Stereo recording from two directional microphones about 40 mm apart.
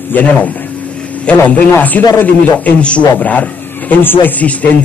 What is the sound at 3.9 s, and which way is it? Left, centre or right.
Speech, left.